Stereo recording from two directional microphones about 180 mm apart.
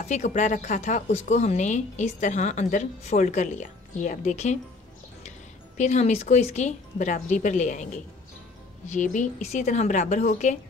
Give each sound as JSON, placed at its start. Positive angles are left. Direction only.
{"t": 0.0, "sound": "speech", "side_deg": 40}
{"t": 5.8, "sound": "speech", "side_deg": 40}